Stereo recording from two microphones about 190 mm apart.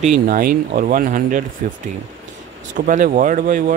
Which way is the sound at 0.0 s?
45° right (ahead or behind).